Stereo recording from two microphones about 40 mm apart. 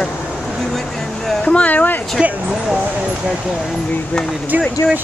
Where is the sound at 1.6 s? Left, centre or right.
Left.